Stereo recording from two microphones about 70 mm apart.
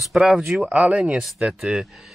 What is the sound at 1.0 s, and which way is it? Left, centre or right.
Speech, centre.